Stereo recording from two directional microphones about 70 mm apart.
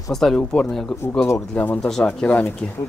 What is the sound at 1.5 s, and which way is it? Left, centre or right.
Speech, left.